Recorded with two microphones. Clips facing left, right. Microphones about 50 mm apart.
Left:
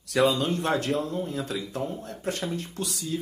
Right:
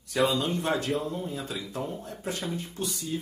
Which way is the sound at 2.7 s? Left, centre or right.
Left.